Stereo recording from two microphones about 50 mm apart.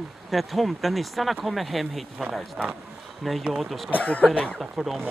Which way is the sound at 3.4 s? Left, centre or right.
Centre.